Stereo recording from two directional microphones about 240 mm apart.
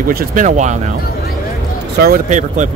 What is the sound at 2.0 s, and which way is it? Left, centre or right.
Speech, right.